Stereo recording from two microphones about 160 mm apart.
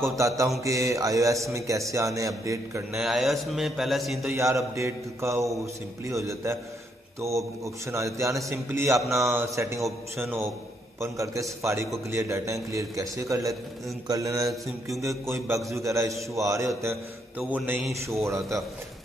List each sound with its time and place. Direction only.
0.0 s a man's voice: 20° right (ahead or behind)
2.9 s a man's voice: centre (ahead or behind)
4.3 s mantra: 15° right (ahead or behind)
6.0 s a man's voice: 20° right (ahead or behind)
8.9 s a man's voice: centre (ahead or behind)
9.3 s mantra: 15° right (ahead or behind)
11.0 s a man's voice: 20° right (ahead or behind)
11.6 s mantra: 15° right (ahead or behind)
12.7 s a man's voice: 20° right (ahead or behind)
14.4 s a man's voice: centre (ahead or behind)
15.0 s a man's voice: 20° right (ahead or behind)
17.4 s mantra: 10° right (ahead or behind)